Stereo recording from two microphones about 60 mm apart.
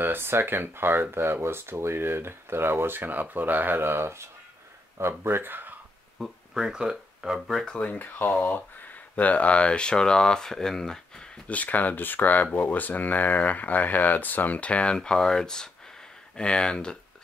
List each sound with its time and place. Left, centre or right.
0.0 s speech: right
6.1 s speech: centre
7.4 s speech: centre
7.7 s speech: left; by 11.2 s centre
11.4 s speech: left